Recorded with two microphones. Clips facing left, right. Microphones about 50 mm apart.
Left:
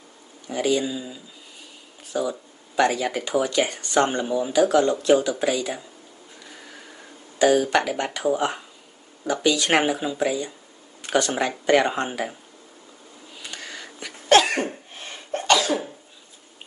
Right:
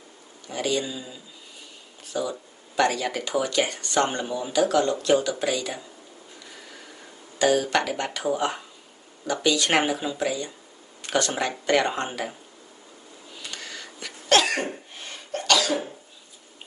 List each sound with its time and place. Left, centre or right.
0.5 s a man's voice: centre
7.4 s speech: centre
13.5 s cough: centre